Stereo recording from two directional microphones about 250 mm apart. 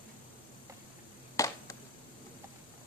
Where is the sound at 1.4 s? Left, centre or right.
Centre.